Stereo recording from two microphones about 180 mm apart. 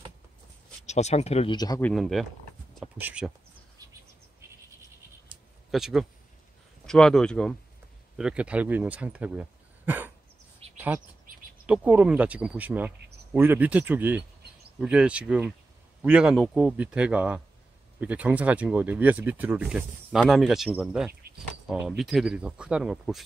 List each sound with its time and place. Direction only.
0.8 s speech: 40° left (ahead or behind)
1.8 s speech: 5° left (ahead or behind)
5.7 s speech: centre (ahead or behind)
10.6 s a sound: 35° right (ahead or behind)
11.6 s speech: 5° right (ahead or behind)